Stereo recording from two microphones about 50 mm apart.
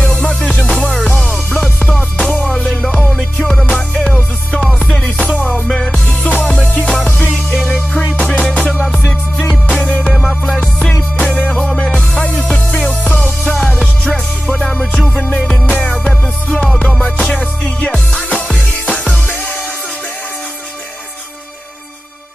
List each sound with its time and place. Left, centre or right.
0.0 s music: left
3.6 s music: left
10.1 s music: centre
10.8 s music: left